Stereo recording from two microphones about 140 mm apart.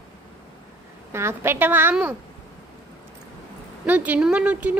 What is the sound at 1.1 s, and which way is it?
Speech, 15° right (ahead or behind).